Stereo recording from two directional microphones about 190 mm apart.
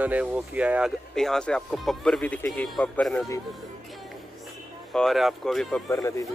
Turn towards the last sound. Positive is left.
turn(degrees=15)  # may be behind; listen again after turning